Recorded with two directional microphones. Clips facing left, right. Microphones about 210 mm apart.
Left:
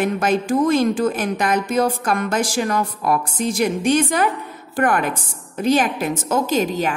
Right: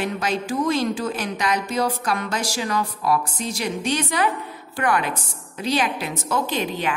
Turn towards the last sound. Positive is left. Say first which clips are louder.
# left 5 dB
turn(degrees=45)  # may be behind; listen again after turning